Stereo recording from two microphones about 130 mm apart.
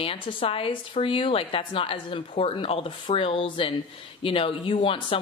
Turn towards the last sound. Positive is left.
turn(degrees=45)  # may be behind; listen again after turning